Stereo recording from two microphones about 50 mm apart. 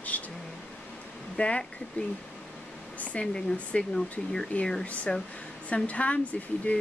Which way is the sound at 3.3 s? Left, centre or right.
Centre.